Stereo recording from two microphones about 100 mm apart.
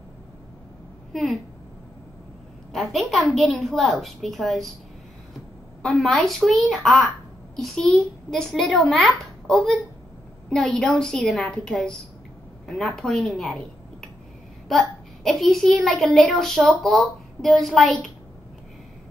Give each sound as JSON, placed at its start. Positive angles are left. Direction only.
{"t": 1.1, "sound": "a child's voice", "side_deg": 0}
{"t": 2.7, "sound": "a child's voice", "side_deg": 0}
{"t": 5.8, "sound": "a child's voice", "side_deg": 0}
{"t": 14.7, "sound": "a child's voice", "side_deg": 0}